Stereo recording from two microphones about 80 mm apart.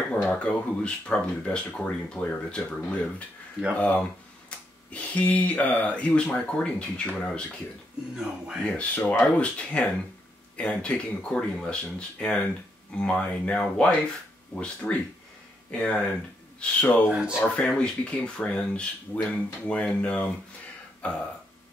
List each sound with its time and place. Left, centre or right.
0.1 s speech: centre
8.7 s speech: centre
17.1 s speech: centre
17.6 s speech: centre
21.0 s burping: centre